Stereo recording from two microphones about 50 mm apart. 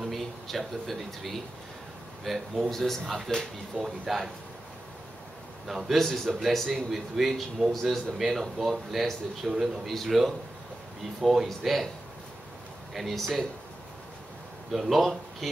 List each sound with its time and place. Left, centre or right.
0.0 s a man's voice: centre
3.7 s speech: centre
5.7 s a man's voice: centre
12.9 s speech: centre
14.7 s a man's voice: centre